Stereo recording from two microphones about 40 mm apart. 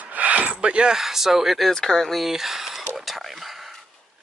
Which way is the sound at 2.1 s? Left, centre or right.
Centre.